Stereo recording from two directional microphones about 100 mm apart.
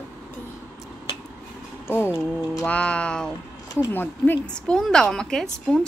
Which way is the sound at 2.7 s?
10° left (ahead or behind).